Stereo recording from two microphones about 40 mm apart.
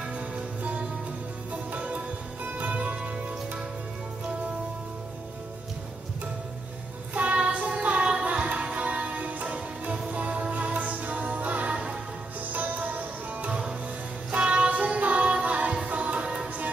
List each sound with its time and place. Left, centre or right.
1.5 s music: right
7.2 s child singing: right
7.8 s music: right
13.5 s music: right